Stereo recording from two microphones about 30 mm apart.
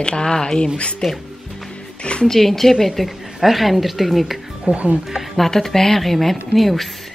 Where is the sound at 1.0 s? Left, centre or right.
Centre.